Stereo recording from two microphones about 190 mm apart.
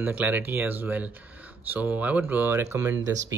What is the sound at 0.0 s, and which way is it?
Speech, 10° right (ahead or behind).